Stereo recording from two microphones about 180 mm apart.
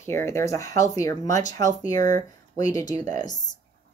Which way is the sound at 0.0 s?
15° left (ahead or behind).